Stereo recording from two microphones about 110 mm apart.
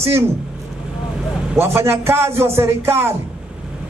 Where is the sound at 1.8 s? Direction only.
20° right (ahead or behind).